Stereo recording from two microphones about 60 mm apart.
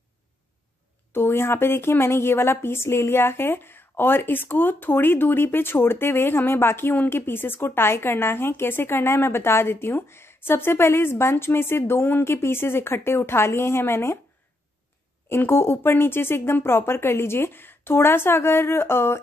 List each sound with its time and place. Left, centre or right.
1.1 s speech: left
15.2 s speech: left